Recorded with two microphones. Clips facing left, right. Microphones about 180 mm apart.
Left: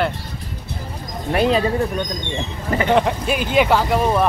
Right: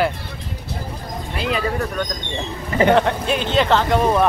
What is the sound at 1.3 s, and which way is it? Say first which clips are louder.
Speech: left 9 dB; 65° left (ahead or behind).